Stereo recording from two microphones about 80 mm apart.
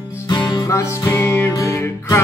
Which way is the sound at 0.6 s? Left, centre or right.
Left.